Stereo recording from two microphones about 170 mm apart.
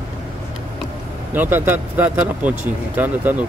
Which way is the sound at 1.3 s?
10° right (ahead or behind).